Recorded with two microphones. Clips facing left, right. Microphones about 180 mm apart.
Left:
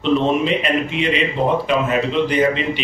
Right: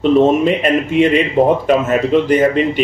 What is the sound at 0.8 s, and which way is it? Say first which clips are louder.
A man's voice: right 7 dB; 50° right (ahead or behind).